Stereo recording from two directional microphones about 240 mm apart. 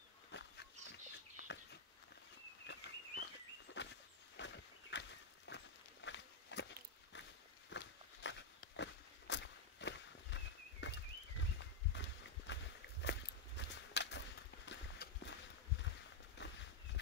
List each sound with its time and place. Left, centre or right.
0.3 s a sound: left
4.9 s walk: left
12.4 s walk: left
13.6 s a sound: left
14.7 s horse: left
16.3 s walk: left